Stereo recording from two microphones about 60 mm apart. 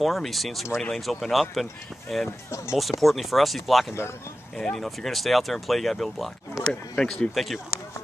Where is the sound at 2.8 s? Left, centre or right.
Centre.